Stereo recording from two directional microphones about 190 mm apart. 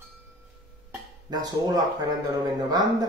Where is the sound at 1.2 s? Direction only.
20° right (ahead or behind).